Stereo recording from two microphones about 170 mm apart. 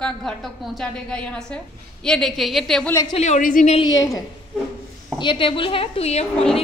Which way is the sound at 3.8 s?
20° left (ahead or behind).